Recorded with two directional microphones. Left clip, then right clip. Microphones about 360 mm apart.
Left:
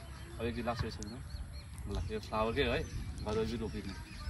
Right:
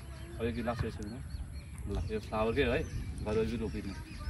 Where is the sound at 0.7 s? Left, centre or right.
Centre.